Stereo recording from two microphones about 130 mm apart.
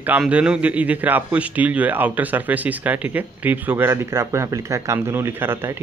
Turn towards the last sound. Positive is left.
turn(degrees=-15)  # may be behind; listen again after turning